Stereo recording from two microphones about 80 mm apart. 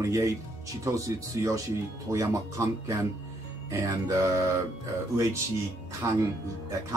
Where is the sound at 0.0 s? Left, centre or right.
Right.